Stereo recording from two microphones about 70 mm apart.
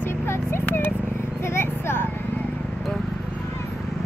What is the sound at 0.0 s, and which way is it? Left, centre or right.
Horse, left.